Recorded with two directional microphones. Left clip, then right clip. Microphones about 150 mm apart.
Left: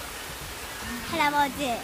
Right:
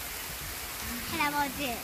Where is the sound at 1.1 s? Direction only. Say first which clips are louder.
Left 6 dB; 40° left (ahead or behind).